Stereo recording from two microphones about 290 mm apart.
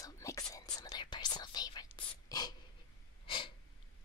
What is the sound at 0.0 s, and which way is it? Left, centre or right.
Whispering, centre.